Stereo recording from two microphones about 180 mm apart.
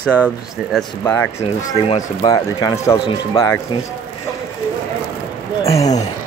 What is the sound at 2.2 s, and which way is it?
Speech, 20° left (ahead or behind).